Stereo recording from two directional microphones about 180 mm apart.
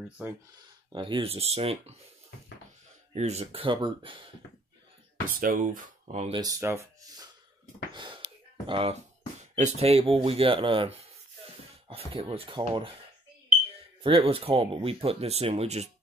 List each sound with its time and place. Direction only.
0.9 s speech: 25° right (ahead or behind)
3.1 s speech: 40° right (ahead or behind)
5.3 s speech: 50° right (ahead or behind)
6.3 s speech: 15° right (ahead or behind)
7.9 s a sound: 25° right (ahead or behind)
9.6 s speech: 40° right (ahead or behind)
11.9 s speech: 35° right (ahead or behind)
14.0 s speech: 30° right (ahead or behind)